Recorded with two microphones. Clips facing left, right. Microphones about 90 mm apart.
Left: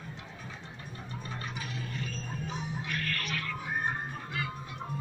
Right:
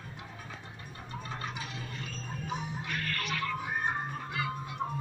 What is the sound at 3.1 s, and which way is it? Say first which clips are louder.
Music: right 2 dB; 20° right (ahead or behind).